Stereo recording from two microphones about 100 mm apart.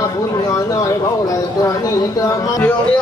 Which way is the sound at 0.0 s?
35° left (ahead or behind).